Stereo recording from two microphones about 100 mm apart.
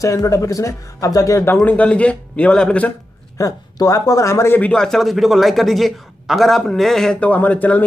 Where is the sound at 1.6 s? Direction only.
15° left (ahead or behind).